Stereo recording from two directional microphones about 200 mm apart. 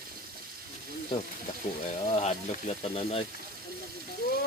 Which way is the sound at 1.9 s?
30° left (ahead or behind).